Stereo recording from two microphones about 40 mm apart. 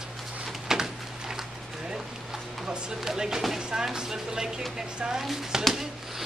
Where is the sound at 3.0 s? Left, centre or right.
Centre.